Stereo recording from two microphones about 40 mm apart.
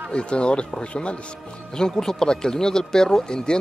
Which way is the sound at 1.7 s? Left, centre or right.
Centre.